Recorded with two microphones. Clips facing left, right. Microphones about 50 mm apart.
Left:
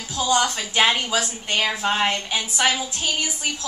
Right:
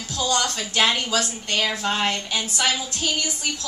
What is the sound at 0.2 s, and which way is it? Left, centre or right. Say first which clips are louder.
A woman's voice: left 3 dB; centre.